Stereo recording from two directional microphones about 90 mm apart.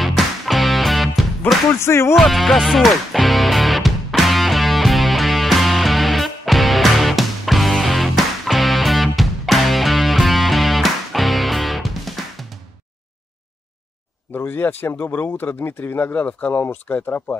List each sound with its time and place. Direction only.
0.0 s music: centre (ahead or behind)
1.8 s speech: 30° left (ahead or behind)
2.1 s music: centre (ahead or behind)
14.3 s speech: 25° left (ahead or behind)